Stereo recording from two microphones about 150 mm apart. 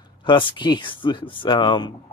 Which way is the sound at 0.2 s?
35° left (ahead or behind).